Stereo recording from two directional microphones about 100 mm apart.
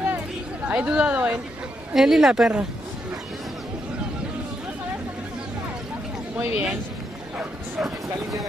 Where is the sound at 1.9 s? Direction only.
5° right (ahead or behind).